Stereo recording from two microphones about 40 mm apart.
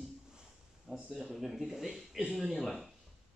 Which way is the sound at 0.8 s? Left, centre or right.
Right.